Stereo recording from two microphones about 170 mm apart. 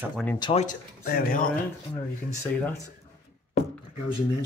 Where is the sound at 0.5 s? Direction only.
55° left (ahead or behind).